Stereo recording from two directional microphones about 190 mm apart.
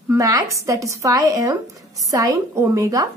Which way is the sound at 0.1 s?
15° right (ahead or behind).